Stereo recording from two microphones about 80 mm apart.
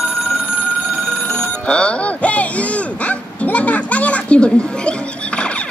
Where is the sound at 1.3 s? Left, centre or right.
Centre.